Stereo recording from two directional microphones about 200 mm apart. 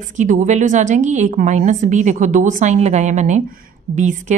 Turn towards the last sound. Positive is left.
turn(degrees=-35)  # may be behind; listen again after turning